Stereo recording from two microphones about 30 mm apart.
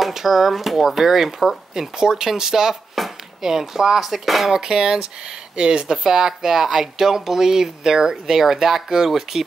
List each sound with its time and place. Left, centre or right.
0.1 s speech: centre
4.6 s speech: right